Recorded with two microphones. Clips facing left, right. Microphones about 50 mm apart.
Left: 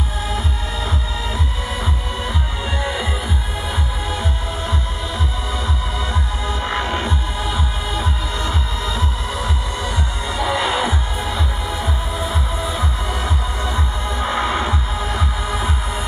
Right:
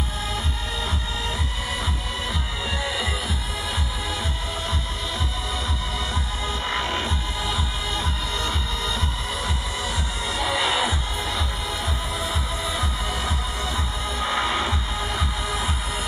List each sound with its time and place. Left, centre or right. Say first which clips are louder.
2.8 s music: left 5 dB; centre
6.4 s music: left 3 dB; centre